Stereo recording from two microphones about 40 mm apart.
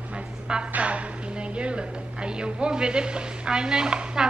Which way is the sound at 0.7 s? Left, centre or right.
Right.